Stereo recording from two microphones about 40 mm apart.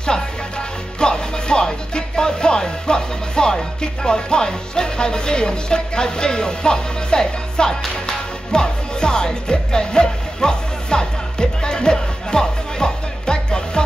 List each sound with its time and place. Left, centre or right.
0.0 s speech: left
8.5 s music: left